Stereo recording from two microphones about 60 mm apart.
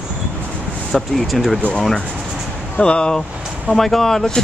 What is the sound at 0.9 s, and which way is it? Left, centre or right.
Speech, centre.